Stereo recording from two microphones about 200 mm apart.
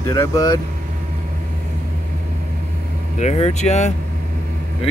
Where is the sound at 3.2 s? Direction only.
35° left (ahead or behind).